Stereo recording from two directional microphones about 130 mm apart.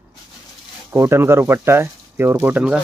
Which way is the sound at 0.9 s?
20° right (ahead or behind).